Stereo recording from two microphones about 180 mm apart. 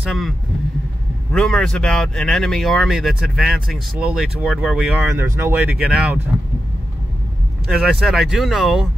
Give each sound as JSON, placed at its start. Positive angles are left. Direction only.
{"t": 1.3, "sound": "speech", "side_deg": 5}
{"t": 7.6, "sound": "speech", "side_deg": 0}